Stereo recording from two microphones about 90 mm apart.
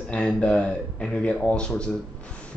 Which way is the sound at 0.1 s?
15° left (ahead or behind).